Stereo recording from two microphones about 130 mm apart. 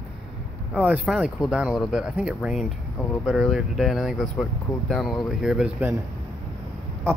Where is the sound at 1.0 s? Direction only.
Centre (ahead or behind).